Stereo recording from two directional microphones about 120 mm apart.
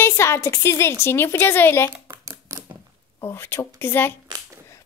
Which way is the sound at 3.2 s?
20° left (ahead or behind).